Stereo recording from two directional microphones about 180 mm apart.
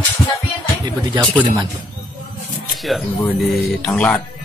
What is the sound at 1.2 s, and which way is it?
Speech, 20° right (ahead or behind).